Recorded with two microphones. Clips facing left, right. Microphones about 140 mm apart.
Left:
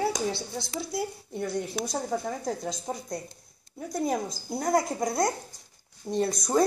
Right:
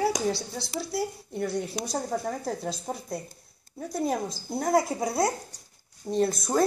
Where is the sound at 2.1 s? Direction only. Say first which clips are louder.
Even; centre (ahead or behind).